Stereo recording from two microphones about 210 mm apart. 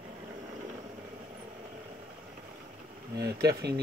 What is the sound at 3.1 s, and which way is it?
Speech, 50° right (ahead or behind).